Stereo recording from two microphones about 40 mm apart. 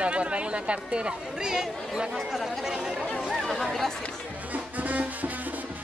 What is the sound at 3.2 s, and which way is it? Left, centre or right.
Speech, centre.